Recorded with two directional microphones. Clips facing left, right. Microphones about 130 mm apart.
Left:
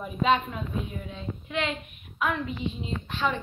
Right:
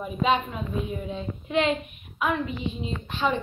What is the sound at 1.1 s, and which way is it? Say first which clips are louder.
A woman's voice: right 7 dB; 25° right (ahead or behind).